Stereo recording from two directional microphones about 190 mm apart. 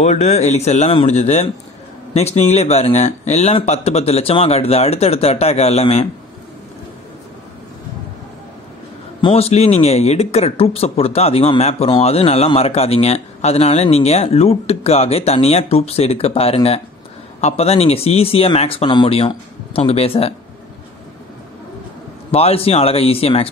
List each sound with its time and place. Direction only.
0.0 s speech: 35° left (ahead or behind)
9.2 s speech: 35° left (ahead or behind)
22.3 s speech: 30° left (ahead or behind)